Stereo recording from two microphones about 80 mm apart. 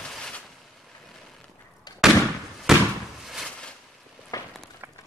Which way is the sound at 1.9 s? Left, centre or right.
Left.